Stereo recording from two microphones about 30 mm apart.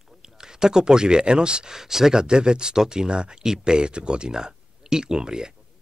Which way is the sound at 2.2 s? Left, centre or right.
Right.